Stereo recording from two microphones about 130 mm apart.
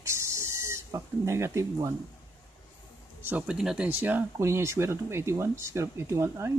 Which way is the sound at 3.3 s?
5° right (ahead or behind).